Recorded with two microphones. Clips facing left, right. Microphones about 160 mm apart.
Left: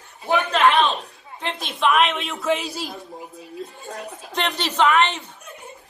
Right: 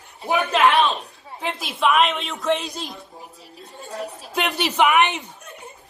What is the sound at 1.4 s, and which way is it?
Speech, 5° right (ahead or behind).